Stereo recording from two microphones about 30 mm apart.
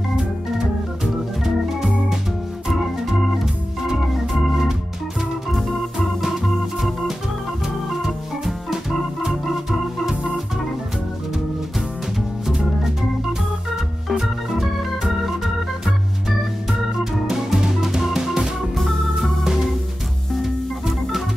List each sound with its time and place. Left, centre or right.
1.0 s organ: centre
2.7 s organ: centre
7.6 s organ: centre
14.2 s organ: centre
17.0 s music: centre
18.8 s organ: centre
20.4 s music: centre